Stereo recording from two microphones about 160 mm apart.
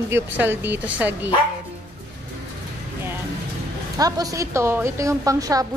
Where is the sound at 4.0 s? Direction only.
25° right (ahead or behind).